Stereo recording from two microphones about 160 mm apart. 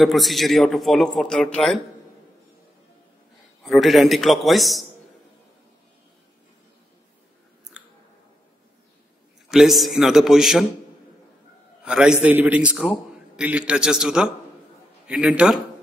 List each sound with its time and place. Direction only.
0.0 s a man's voice: centre (ahead or behind)
3.6 s a man's voice: centre (ahead or behind)
7.8 s clicking: 5° right (ahead or behind)
9.5 s a man's voice: centre (ahead or behind)
11.8 s a man's voice: 5° right (ahead or behind)